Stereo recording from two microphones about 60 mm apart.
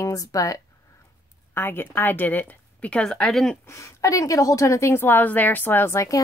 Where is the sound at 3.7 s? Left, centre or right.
Left.